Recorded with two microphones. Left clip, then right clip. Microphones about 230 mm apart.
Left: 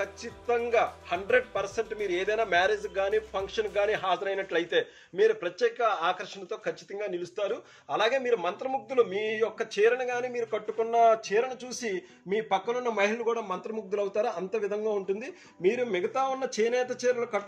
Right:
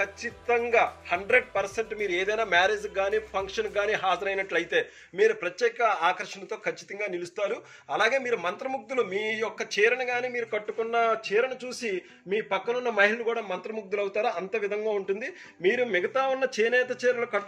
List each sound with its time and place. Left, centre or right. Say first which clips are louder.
0.0 s a man's voice: right 4 dB; left